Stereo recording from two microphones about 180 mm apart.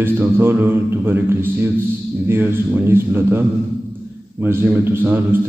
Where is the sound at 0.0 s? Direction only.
10° right (ahead or behind).